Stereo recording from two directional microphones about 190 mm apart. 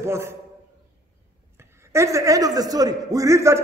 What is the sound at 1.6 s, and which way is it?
A man's voice, 15° right (ahead or behind).